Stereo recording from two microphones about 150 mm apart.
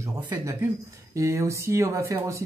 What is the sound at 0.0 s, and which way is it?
Speech, 20° right (ahead or behind).